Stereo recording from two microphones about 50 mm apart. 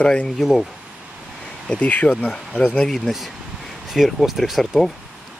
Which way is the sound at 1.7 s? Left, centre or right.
Left.